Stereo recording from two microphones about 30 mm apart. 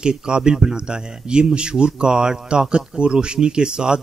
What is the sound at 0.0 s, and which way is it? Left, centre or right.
Speech, right.